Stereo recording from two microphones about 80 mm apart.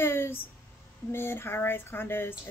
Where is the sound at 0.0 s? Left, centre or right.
Left.